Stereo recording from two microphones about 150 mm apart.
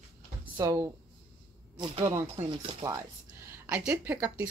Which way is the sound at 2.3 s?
35° right (ahead or behind).